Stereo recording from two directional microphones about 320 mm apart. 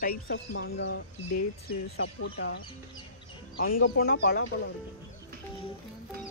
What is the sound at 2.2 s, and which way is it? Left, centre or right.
Speech, left.